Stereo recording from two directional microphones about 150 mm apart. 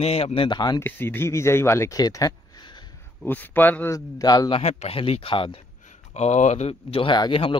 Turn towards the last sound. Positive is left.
turn(degrees=35)  # may be behind; listen again after turning